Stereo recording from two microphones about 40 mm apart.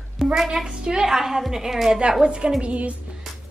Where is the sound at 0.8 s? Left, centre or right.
Centre.